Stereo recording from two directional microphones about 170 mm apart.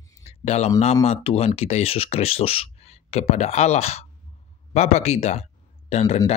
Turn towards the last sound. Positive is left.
turn(degrees=40)  # may be behind; listen again after turning